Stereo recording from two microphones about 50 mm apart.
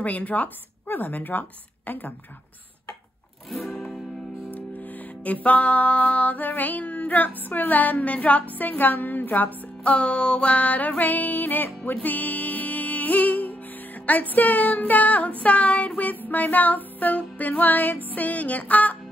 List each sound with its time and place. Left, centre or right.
0.0 s music: left
3.4 s music: centre
4.5 s music: left
9.9 s music: left
15.4 s child singing: left
16.0 s music: left